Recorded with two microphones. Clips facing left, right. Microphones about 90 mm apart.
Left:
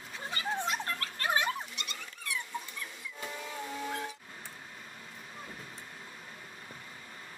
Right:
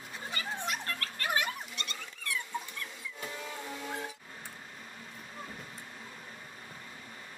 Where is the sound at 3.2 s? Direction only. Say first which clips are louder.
Left 1 dB; centre (ahead or behind).